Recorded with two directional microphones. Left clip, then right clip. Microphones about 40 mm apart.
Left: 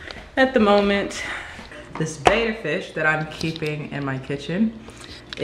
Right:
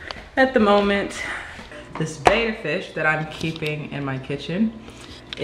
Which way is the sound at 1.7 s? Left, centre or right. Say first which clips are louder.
Left 1 dB; centre.